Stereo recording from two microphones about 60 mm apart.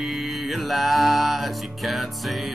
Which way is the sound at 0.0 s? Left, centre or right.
Centre.